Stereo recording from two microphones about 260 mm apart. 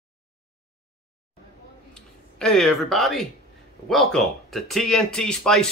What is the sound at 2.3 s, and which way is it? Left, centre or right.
Speech, centre.